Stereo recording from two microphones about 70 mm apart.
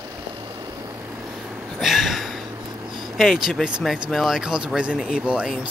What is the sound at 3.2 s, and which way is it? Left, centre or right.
Speech, centre.